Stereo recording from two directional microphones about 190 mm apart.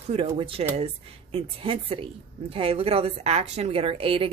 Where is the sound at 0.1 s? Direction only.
30° right (ahead or behind).